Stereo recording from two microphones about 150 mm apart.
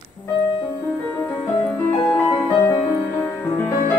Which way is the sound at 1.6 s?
10° left (ahead or behind).